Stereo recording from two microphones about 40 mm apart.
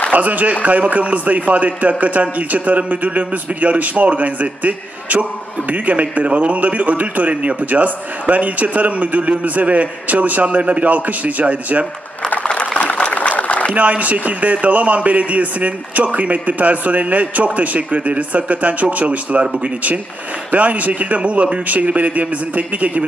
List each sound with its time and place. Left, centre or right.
0.1 s a man's voice: right
12.4 s a sound: left
13.7 s a man's voice: right
20.5 s a man's voice: right